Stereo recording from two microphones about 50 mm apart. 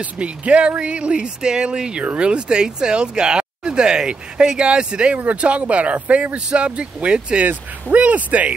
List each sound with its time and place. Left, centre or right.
0.0 s speech: right